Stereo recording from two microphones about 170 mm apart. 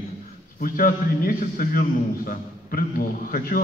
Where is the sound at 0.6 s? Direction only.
55° left (ahead or behind).